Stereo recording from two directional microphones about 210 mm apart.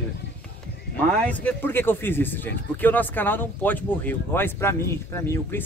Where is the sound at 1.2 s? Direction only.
5° left (ahead or behind).